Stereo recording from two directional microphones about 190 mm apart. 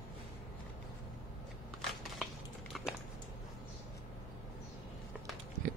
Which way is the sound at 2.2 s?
Centre (ahead or behind).